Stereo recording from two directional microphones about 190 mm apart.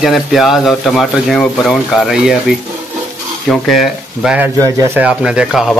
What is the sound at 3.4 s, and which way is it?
Speech, centre (ahead or behind).